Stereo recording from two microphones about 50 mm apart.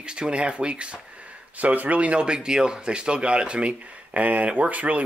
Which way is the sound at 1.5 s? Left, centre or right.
Right.